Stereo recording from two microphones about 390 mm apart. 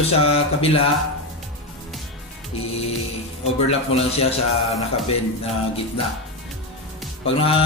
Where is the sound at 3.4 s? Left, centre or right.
Centre.